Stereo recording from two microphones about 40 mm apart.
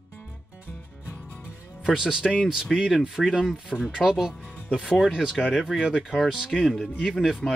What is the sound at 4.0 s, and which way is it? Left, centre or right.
Speech, centre.